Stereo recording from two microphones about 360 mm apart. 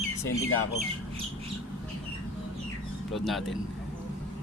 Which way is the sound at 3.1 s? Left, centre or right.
Centre.